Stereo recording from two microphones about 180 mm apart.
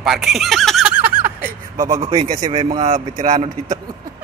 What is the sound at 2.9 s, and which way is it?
Speech, 45° right (ahead or behind).